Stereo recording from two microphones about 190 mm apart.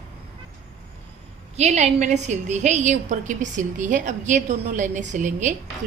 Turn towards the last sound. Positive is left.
turn(degrees=-40)  # may be behind; listen again after turning